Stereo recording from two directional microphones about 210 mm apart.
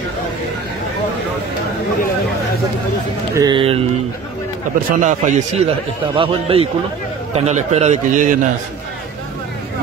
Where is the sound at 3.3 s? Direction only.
20° right (ahead or behind).